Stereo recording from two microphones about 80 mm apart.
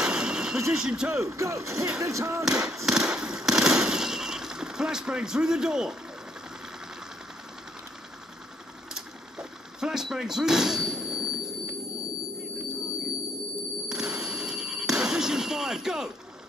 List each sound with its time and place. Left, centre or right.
0.0 s a sound: centre
0.7 s speech: centre
1.1 s speech: right
2.4 s speech: centre
2.9 s fireworks: centre
8.9 s a sound: centre
13.8 s telephone bell ringing: centre